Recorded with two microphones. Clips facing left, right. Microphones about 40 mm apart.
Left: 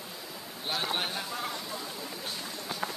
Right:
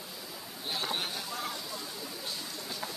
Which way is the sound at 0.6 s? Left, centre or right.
Left.